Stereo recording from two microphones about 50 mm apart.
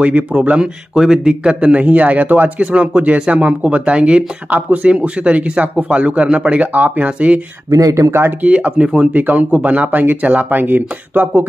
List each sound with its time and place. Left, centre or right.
0.0 s a man's voice: right
0.9 s speech: centre
1.6 s a man's voice: right
7.9 s speech: right
8.4 s a man's voice: right
9.1 s speech: right